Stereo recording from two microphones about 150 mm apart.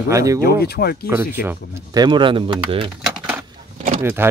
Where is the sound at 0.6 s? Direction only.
90° left.